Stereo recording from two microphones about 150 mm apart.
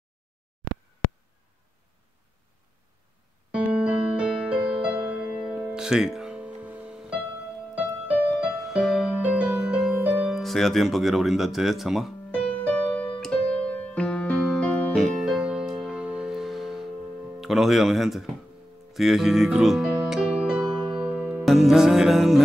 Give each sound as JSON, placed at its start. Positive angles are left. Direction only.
{"t": 3.5, "sound": "music", "side_deg": -5}
{"t": 8.4, "sound": "music", "side_deg": -5}
{"t": 17.4, "sound": "speech", "side_deg": 0}
{"t": 18.9, "sound": "music", "side_deg": 0}